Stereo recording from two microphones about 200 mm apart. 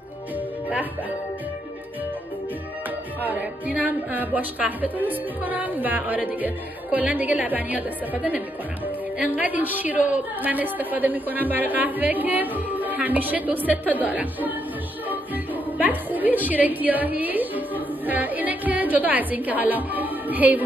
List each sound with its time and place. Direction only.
3.3 s a woman's voice: 5° right (ahead or behind)
15.0 s music: 10° right (ahead or behind)